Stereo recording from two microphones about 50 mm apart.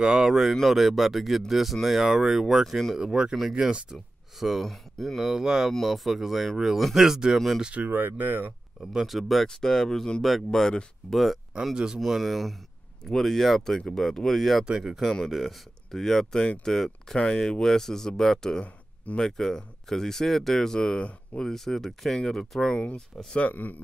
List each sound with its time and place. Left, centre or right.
0.0 s speech: centre
3.1 s speech: centre
5.3 s speech: centre
5.7 s speech: centre
7.6 s speech: right
7.9 s speech: right
8.9 s speech: centre
11.6 s speech: centre
12.0 s speech: centre
14.6 s speech: centre
15.2 s speech: centre
23.4 s speech: left